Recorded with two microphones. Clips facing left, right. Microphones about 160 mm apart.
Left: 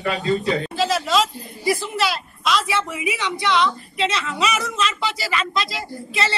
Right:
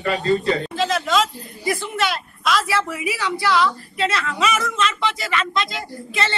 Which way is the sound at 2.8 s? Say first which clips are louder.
Even; 20° left (ahead or behind).